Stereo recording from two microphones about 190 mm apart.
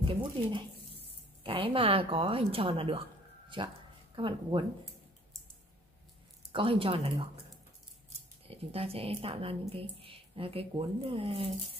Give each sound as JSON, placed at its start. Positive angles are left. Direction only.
{"t": 0.1, "sound": "a woman's voice", "side_deg": -25}
{"t": 6.5, "sound": "a woman's voice", "side_deg": -30}
{"t": 8.5, "sound": "a woman's voice", "side_deg": -30}